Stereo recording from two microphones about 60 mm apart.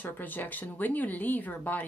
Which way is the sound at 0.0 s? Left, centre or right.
Left.